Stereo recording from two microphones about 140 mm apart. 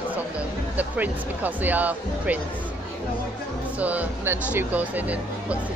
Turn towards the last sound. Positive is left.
turn(degrees=-10)  # may be behind; listen again after turning